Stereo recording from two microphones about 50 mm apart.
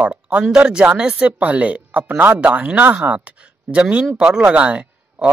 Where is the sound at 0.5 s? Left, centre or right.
Centre.